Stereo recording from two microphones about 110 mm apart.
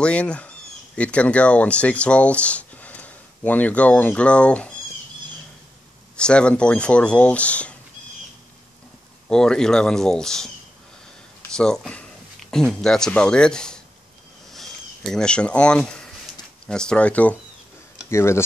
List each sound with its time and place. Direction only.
0.0 s speech: 10° left (ahead or behind)
6.1 s speech: 10° left (ahead or behind)
9.3 s speech: 5° left (ahead or behind)
11.5 s speech: 5° left (ahead or behind)
14.5 s a sound: centre (ahead or behind)
16.6 s speech: 5° left (ahead or behind)
18.1 s speech: 25° left (ahead or behind)